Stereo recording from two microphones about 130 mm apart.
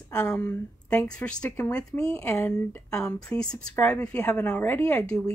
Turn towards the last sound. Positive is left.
turn(degrees=10)  # may be behind; listen again after turning